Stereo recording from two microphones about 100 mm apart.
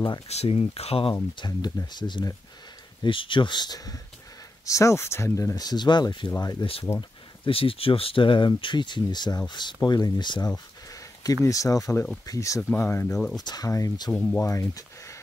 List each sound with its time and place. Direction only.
0.3 s speech: 90° left
1.3 s speech: 45° left (ahead or behind)
6.6 s speech: 60° left (ahead or behind); by 12.6 s 35° left (ahead or behind)
12.6 s speech: 20° left (ahead or behind)
13.4 s speech: 45° left (ahead or behind)
13.7 s speech: 35° left (ahead or behind)